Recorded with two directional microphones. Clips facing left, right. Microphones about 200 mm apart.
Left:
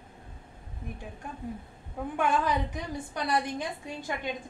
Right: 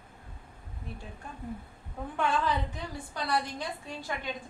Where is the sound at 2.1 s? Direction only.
15° left (ahead or behind).